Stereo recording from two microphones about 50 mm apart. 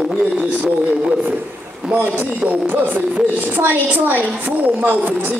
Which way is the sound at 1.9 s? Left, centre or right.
Right.